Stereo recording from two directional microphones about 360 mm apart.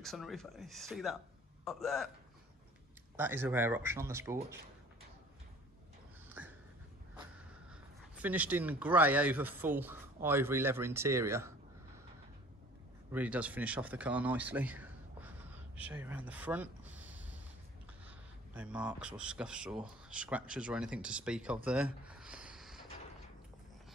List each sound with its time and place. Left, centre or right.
0.0 s a man's voice: centre
3.2 s speech: centre
6.2 s a sound: centre
7.2 s speech: centre
13.1 s speech: centre
21.6 s a sound: centre